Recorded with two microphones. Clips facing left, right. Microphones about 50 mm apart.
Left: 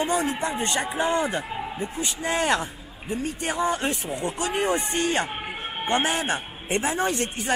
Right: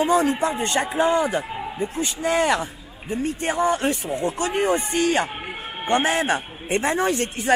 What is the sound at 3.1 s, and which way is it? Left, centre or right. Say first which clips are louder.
Speech: right 4 dB; right.